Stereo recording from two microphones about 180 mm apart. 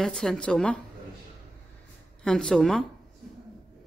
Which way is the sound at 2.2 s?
5° left (ahead or behind).